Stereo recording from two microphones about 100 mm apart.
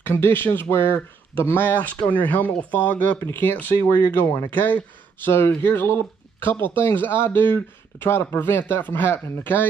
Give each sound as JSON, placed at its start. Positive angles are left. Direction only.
{"t": 0.0, "sound": "speech", "side_deg": 25}